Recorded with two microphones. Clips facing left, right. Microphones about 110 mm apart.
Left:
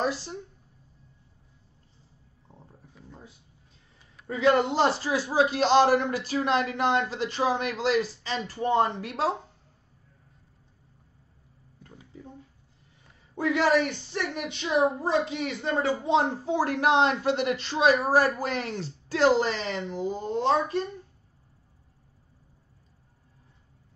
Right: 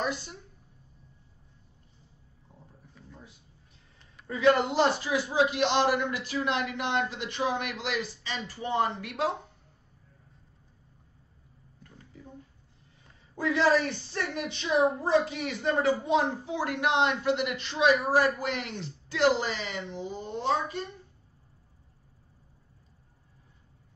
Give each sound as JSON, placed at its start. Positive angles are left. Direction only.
{"t": 0.0, "sound": "speech", "side_deg": 35}
{"t": 4.3, "sound": "a man's voice", "side_deg": 25}
{"t": 13.5, "sound": "a woman's voice", "side_deg": -30}
{"t": 14.1, "sound": "a woman's voice", "side_deg": 20}